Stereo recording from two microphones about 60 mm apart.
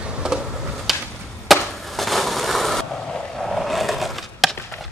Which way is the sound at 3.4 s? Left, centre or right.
Centre.